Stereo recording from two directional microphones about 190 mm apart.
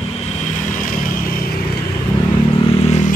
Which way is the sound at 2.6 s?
35° left (ahead or behind).